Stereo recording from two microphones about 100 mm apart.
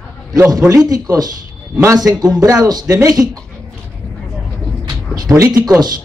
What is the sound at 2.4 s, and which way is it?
Speech, 35° right (ahead or behind).